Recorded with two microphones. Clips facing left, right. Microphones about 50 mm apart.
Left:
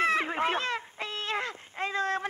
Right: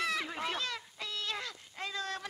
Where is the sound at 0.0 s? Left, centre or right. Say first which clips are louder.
Left 8 dB; left.